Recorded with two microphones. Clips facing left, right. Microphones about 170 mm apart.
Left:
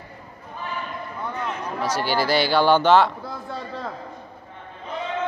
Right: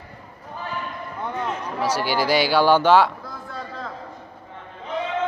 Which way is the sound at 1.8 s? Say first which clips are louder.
Right 1 dB; 10° right (ahead or behind).